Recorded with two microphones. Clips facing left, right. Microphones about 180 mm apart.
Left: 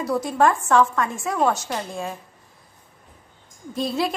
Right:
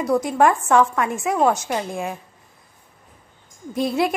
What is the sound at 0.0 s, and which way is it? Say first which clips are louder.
A woman's voice: right 2 dB; 15° right (ahead or behind).